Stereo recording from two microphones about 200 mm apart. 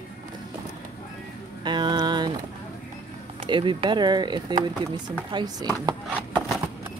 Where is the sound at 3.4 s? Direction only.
25° right (ahead or behind).